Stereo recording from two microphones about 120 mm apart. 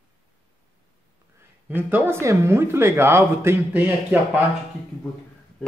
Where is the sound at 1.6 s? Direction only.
15° right (ahead or behind).